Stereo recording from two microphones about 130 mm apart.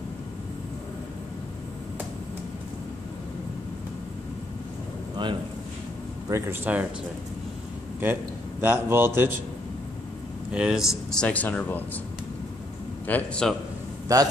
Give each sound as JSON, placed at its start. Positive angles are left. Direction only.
{"t": 5.1, "sound": "a sound", "side_deg": -35}
{"t": 6.2, "sound": "speech", "side_deg": -20}
{"t": 8.0, "sound": "a man's voice", "side_deg": -15}
{"t": 10.5, "sound": "speech", "side_deg": -5}
{"t": 13.0, "sound": "a man's voice", "side_deg": 10}
{"t": 14.0, "sound": "a man's voice", "side_deg": -30}